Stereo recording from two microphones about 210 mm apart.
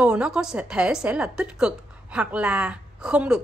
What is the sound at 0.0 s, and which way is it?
A woman's voice, 5° right (ahead or behind).